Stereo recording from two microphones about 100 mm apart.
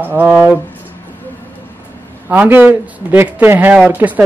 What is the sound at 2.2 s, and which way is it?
A man's voice, 15° right (ahead or behind).